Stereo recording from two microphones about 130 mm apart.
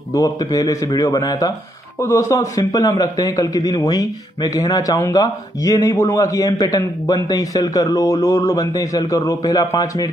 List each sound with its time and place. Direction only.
0.1 s a man's voice: 25° left (ahead or behind)